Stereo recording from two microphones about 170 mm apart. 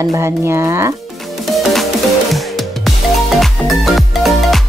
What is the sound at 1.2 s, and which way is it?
Music, centre (ahead or behind).